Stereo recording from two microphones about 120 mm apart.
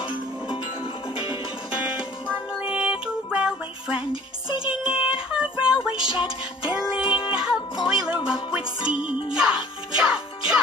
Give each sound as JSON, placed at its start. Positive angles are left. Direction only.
{"t": 1.1, "sound": "music", "side_deg": 35}
{"t": 1.9, "sound": "music", "side_deg": -5}
{"t": 5.3, "sound": "child singing", "side_deg": -5}
{"t": 6.6, "sound": "music", "side_deg": -5}
{"t": 7.1, "sound": "music", "side_deg": 40}
{"t": 7.3, "sound": "music", "side_deg": -5}